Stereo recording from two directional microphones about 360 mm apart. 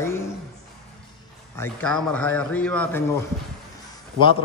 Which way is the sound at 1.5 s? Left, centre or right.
Centre.